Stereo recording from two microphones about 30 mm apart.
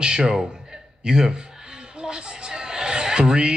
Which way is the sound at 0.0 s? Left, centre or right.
Right.